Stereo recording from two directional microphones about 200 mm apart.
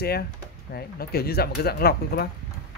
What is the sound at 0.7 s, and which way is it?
Speech, 50° left (ahead or behind).